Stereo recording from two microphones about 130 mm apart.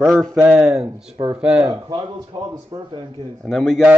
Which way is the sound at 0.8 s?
40° right (ahead or behind).